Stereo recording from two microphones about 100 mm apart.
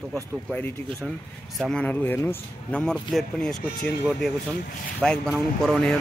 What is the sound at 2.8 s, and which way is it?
Speech, 5° left (ahead or behind).